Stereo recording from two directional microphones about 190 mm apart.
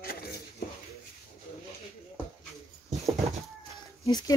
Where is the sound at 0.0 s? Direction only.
50° left (ahead or behind).